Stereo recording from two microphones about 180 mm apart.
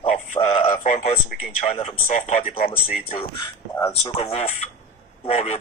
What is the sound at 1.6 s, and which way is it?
Speech, 40° left (ahead or behind).